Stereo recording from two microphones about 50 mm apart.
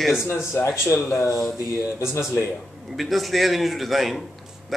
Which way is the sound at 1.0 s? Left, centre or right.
Left.